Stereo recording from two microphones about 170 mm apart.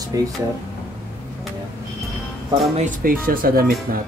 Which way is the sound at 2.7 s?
50° right (ahead or behind).